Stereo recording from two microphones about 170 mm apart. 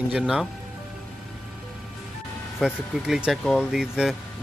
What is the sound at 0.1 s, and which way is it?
Speech, 5° right (ahead or behind).